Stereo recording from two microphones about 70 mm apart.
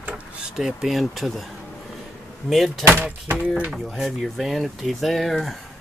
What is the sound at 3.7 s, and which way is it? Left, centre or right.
Speech, centre.